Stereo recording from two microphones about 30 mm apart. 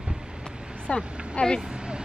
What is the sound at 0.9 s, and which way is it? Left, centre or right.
Speech, left.